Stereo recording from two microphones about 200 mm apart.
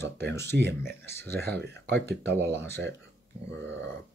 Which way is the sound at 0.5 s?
55° right (ahead or behind).